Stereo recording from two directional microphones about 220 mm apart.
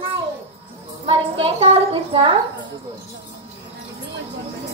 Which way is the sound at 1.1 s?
25° right (ahead or behind).